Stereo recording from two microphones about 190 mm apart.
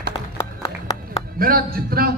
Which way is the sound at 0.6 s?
20° left (ahead or behind).